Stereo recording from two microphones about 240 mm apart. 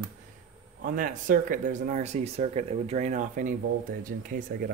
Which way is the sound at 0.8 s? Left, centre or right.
Right.